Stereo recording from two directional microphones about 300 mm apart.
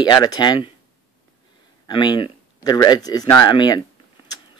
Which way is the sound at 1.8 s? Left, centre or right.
Centre.